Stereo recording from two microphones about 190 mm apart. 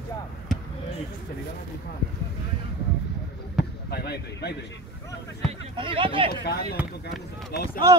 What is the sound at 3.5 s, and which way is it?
Speech, 55° left (ahead or behind).